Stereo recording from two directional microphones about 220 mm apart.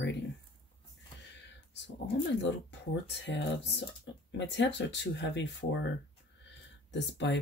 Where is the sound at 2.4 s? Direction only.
55° left (ahead or behind).